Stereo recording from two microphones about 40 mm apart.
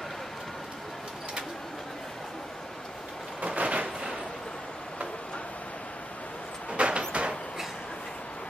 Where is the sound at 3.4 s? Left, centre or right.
Right.